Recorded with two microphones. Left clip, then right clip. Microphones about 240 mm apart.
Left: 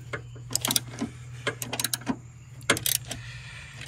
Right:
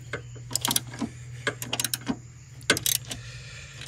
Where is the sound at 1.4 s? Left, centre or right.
Centre.